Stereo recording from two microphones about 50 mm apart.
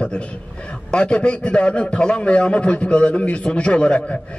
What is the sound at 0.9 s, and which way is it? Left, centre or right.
A man's voice, centre.